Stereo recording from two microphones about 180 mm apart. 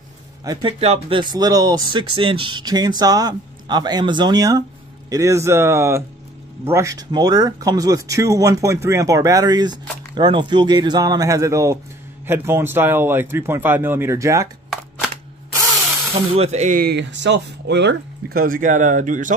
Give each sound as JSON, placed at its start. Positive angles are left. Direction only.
{"t": 0.5, "sound": "speech", "side_deg": -25}
{"t": 16.3, "sound": "speech", "side_deg": -40}